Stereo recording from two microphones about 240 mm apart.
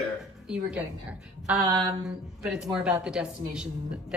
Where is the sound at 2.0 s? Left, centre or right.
Centre.